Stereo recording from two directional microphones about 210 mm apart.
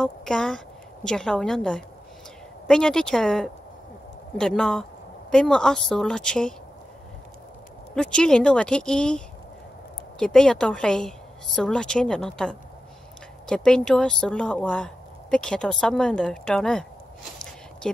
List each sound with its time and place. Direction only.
0.0 s speech: 5° left (ahead or behind)
7.9 s speech: 5° left (ahead or behind)
17.8 s speech: 5° left (ahead or behind)